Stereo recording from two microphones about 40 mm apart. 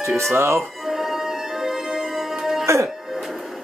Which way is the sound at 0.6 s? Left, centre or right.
Centre.